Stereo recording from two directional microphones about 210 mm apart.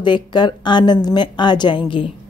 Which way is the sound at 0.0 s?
20° left (ahead or behind).